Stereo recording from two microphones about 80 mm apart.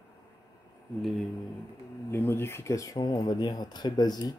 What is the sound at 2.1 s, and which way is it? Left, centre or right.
Speech, left.